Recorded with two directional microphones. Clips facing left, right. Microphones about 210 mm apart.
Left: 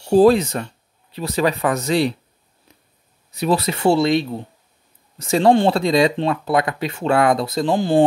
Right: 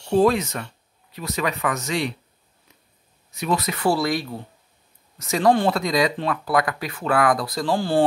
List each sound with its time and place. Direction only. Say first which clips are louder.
0.1 s speech: left 6 dB; 35° left (ahead or behind)
3.3 s speech: left 5 dB; 35° left (ahead or behind)